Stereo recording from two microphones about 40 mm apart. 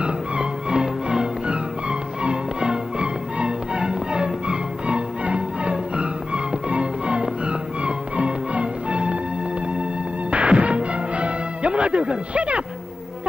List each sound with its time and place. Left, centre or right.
0.0 s music: right
10.3 s music: right